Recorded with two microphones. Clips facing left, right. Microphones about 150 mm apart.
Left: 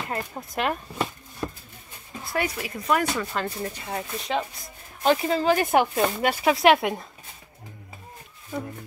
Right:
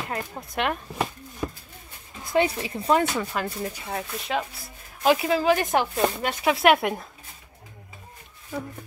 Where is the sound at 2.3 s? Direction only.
25° right (ahead or behind).